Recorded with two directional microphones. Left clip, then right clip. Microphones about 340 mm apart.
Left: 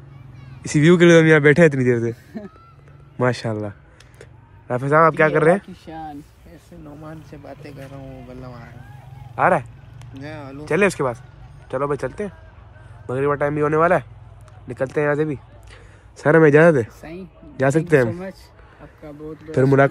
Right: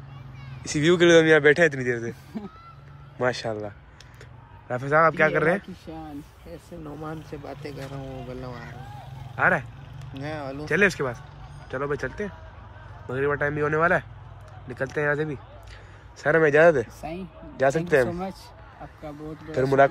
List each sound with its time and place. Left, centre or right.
0.6 s speech: centre
3.2 s a man's voice: centre
7.0 s speech: centre
9.3 s speech: centre
10.2 s speech: centre
10.6 s a man's voice: centre